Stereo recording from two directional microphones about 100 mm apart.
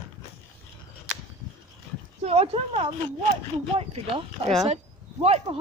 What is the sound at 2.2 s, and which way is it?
Speech, 90° right.